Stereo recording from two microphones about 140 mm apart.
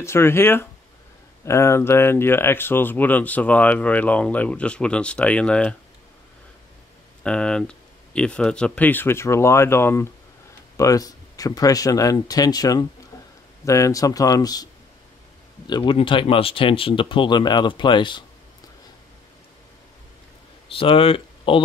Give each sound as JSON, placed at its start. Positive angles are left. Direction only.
{"t": 0.0, "sound": "speech", "side_deg": 15}
{"t": 7.2, "sound": "speech", "side_deg": 5}
{"t": 20.6, "sound": "speech", "side_deg": 40}